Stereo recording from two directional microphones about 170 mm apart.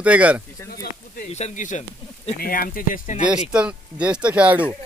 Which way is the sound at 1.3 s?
45° left (ahead or behind).